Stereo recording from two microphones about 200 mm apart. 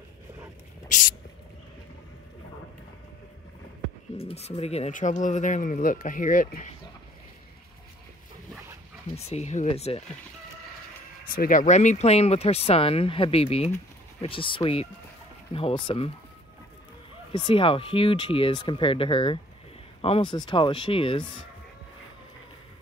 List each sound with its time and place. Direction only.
4.2 s speech: 30° left (ahead or behind)
9.1 s speech: 30° left (ahead or behind)
11.2 s speech: 45° left (ahead or behind); by 16.1 s 25° left (ahead or behind)
17.3 s speech: 25° left (ahead or behind)